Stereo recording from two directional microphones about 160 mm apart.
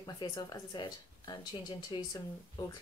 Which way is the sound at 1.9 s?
30° left (ahead or behind).